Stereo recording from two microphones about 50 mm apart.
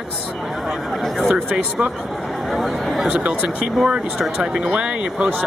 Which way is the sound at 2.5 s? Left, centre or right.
Centre.